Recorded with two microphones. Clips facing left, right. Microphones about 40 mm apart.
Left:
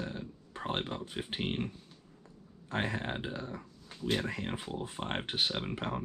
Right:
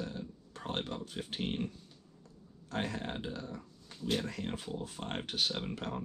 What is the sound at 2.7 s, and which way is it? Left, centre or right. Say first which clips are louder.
Speech: left 3 dB; left.